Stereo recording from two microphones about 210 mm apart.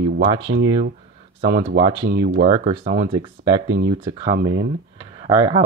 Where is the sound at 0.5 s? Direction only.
90° right.